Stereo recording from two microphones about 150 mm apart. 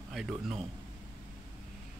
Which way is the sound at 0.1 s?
Centre (ahead or behind).